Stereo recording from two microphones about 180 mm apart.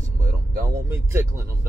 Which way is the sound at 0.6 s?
15° right (ahead or behind).